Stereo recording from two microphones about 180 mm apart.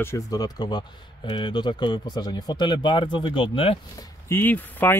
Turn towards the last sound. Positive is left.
turn(degrees=10)  # may be behind; listen again after turning